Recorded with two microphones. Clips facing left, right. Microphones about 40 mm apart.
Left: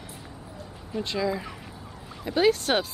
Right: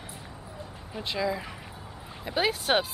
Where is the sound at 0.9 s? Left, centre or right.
Centre.